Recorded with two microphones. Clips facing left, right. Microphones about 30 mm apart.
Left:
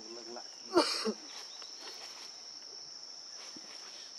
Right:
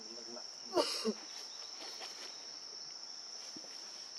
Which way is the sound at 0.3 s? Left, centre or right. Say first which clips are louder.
Left 7 dB; left.